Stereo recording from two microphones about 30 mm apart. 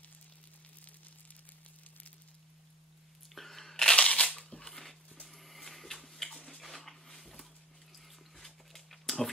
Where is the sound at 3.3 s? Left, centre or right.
Centre.